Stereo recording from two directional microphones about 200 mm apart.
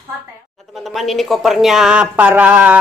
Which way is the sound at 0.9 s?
Centre (ahead or behind).